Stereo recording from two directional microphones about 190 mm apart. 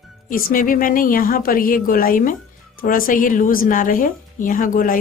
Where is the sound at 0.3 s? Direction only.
45° left (ahead or behind).